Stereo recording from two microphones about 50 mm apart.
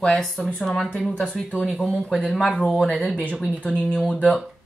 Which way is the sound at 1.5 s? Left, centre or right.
Centre.